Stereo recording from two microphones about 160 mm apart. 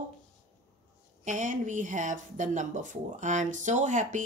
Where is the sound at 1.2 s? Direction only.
55° right (ahead or behind).